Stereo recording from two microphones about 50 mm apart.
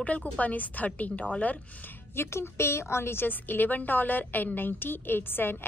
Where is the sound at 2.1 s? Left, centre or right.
Left.